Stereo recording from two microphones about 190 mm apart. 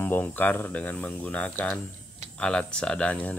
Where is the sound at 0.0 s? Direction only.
10° left (ahead or behind).